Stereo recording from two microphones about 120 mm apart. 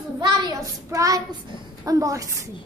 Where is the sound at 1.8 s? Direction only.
30° right (ahead or behind).